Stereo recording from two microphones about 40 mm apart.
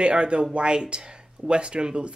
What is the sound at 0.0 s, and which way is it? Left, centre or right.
Speech, right.